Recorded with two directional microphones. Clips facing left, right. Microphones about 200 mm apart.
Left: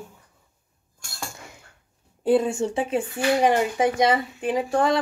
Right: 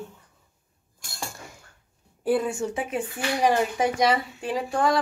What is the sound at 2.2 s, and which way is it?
Speech, 25° left (ahead or behind).